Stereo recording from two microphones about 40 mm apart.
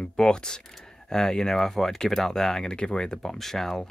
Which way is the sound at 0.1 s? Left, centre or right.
Centre.